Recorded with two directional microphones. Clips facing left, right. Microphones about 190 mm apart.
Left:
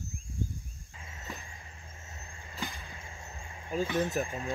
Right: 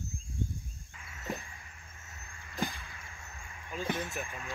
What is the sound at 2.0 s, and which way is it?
Vehicle, 30° left (ahead or behind).